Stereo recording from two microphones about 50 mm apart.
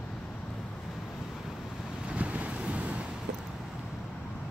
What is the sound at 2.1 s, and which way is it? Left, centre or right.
Wind noise, right.